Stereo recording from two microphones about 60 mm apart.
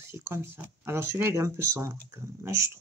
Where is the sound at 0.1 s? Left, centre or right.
Right.